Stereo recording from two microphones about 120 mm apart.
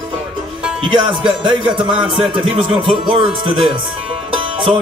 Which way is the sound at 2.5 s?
45° right (ahead or behind).